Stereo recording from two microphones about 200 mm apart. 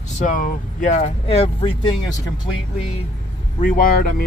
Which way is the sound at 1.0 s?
30° left (ahead or behind).